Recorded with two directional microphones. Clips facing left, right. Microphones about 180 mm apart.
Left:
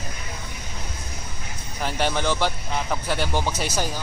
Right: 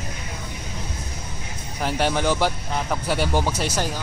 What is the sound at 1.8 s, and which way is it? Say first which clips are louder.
Speech: right 2 dB; 5° right (ahead or behind).